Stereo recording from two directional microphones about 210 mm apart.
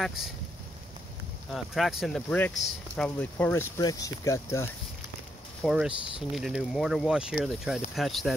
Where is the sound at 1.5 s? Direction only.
Centre (ahead or behind).